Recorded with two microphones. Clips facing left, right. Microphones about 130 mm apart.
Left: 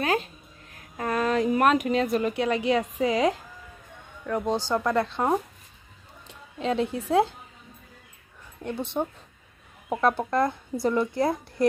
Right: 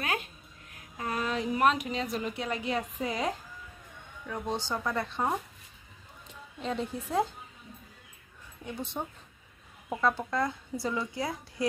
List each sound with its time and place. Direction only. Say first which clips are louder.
0.0 s a sound: left 8 dB; 35° left (ahead or behind)
0.9 s a woman's voice: left 7 dB; 55° left (ahead or behind); by 3.3 s 90° left
4.6 s speech: left 8 dB; 85° left
6.6 s speech: left 7 dB; 85° left
8.6 s a woman's voice: left 8 dB; 65° left (ahead or behind)